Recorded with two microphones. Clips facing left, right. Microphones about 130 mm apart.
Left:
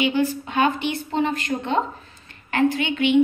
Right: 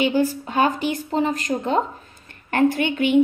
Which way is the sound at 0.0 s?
40° right (ahead or behind).